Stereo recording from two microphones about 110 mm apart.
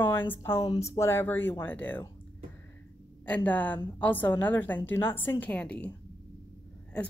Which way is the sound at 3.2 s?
15° left (ahead or behind).